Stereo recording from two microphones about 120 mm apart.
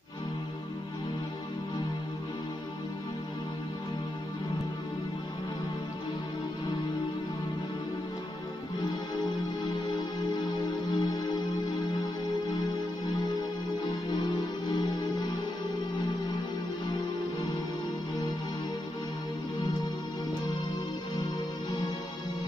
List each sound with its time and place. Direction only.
11.0 s music: 30° left (ahead or behind)
14.7 s music: 35° left (ahead or behind)